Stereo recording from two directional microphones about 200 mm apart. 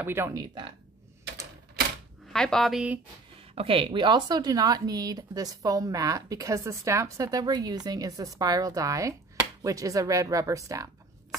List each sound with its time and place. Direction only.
0.0 s speech: 10° right (ahead or behind)
2.3 s speech: 5° left (ahead or behind)
3.5 s speech: 25° right (ahead or behind)